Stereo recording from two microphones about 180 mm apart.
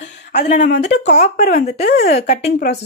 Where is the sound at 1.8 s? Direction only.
60° left (ahead or behind).